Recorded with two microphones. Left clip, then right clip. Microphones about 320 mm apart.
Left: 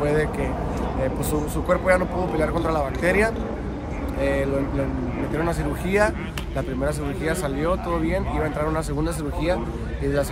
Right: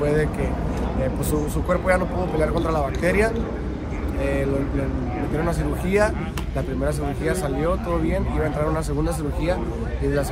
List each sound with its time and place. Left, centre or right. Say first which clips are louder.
0.0 s speech: even; centre
1.7 s speech: left 1 dB; centre